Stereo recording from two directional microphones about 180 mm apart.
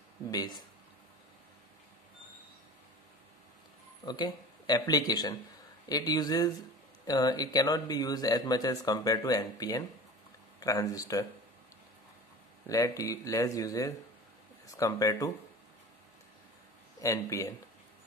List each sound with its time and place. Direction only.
0.3 s speech: 20° left (ahead or behind)
4.0 s speech: 25° left (ahead or behind)
12.6 s speech: 20° left (ahead or behind)
17.0 s speech: 15° left (ahead or behind)